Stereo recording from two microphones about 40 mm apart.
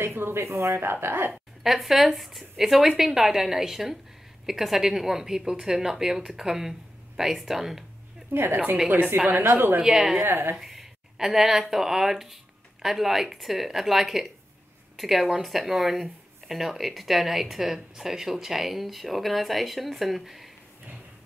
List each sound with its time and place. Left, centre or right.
0.0 s speech: right
1.0 s a woman's voice: right
1.3 s a woman's voice: centre
8.3 s a woman's voice: right
9.3 s a woman's voice: right
9.8 s a woman's voice: centre
10.2 s a woman's voice: right
10.5 s a woman's voice: centre